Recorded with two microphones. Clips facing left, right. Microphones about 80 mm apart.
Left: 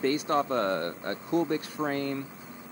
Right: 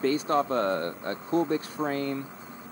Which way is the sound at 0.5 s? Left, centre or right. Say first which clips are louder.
Right 1 dB; right.